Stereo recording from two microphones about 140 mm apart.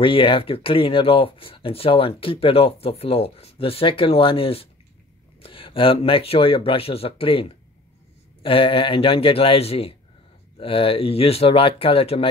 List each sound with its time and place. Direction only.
0.0 s speech: 40° left (ahead or behind)